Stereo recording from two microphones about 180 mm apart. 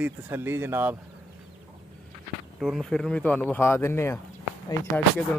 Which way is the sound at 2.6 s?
Centre (ahead or behind).